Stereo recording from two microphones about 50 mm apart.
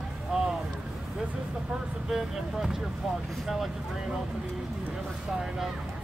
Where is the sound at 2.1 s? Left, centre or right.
Centre.